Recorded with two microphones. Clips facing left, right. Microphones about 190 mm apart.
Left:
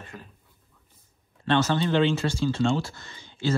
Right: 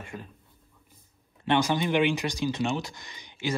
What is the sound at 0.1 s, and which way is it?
Speech, 20° right (ahead or behind).